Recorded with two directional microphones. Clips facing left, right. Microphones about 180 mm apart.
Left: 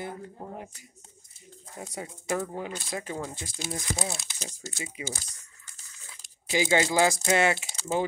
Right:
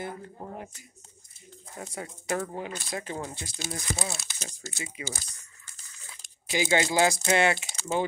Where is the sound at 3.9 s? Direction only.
15° left (ahead or behind).